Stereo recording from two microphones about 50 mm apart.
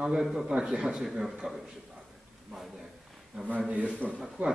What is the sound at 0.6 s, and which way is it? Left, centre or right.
A man's voice, centre.